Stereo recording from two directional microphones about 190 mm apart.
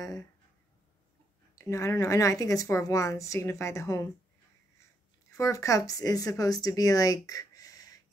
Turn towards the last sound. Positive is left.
turn(degrees=20)  # may be behind; listen again after turning